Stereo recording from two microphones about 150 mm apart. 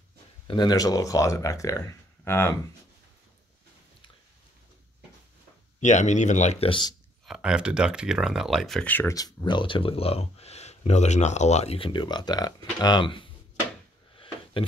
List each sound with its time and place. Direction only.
0.5 s speech: 30° left (ahead or behind)
5.8 s speech: 50° left (ahead or behind)
6.7 s speech: 30° left (ahead or behind)
7.2 s speech: 5° right (ahead or behind); by 9.1 s 10° left (ahead or behind)
9.1 s speech: 25° left (ahead or behind)
14.1 s a sound: 35° left (ahead or behind)